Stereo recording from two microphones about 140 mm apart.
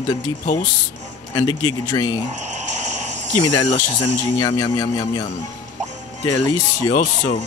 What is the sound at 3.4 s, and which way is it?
A man's voice, 30° left (ahead or behind).